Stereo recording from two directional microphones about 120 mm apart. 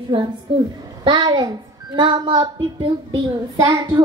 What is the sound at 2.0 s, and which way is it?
Child singing, 40° right (ahead or behind).